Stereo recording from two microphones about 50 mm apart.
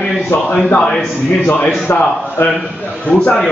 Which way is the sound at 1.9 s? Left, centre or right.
Left.